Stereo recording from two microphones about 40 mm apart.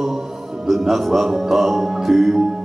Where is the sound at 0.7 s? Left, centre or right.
Centre.